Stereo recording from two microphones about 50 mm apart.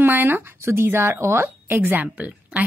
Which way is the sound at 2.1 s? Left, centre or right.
Right.